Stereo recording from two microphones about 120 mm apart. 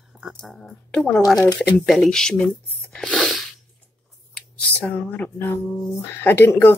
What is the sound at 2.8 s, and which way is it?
Sneeze, 5° left (ahead or behind).